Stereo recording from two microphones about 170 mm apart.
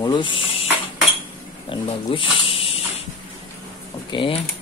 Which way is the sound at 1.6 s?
30° left (ahead or behind).